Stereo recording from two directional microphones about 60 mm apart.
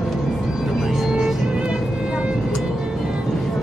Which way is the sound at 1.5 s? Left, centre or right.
Centre.